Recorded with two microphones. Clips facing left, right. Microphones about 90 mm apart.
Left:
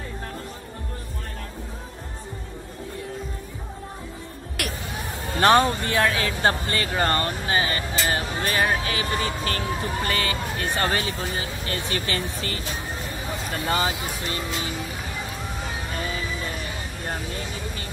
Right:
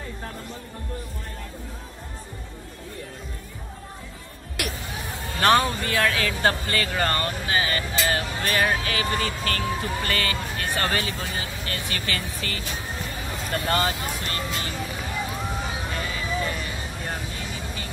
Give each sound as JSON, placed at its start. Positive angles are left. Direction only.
{"t": 4.6, "sound": "a sound", "side_deg": 0}
{"t": 5.4, "sound": "speech", "side_deg": 25}
{"t": 13.5, "sound": "speech", "side_deg": 5}